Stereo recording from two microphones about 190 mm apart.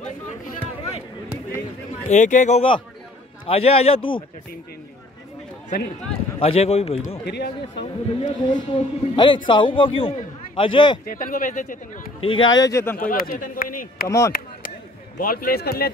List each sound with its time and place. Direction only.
2.0 s speech: 40° left (ahead or behind)
6.4 s speech: 30° left (ahead or behind)
7.2 s speech: 60° left (ahead or behind)
7.8 s speech: 35° left (ahead or behind)
8.5 s a man's voice: 25° left (ahead or behind)
11.1 s speech: 45° left (ahead or behind)
12.2 s speech: 25° left (ahead or behind)
12.6 s speech: 15° left (ahead or behind)
12.9 s speech: 50° left (ahead or behind)
14.0 s speech: 15° left (ahead or behind)
15.1 s speech: 50° left (ahead or behind)